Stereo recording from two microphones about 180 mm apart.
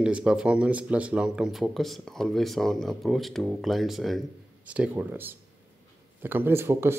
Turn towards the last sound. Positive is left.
turn(degrees=-15)  # may be behind; listen again after turning